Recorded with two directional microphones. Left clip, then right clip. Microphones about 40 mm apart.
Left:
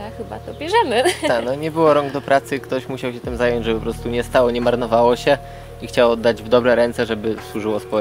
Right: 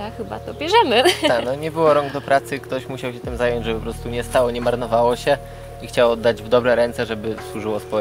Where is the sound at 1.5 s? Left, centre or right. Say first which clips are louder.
Left 1 dB; left.